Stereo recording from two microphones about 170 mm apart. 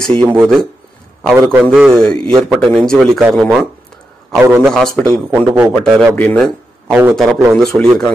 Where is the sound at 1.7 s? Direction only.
Centre (ahead or behind).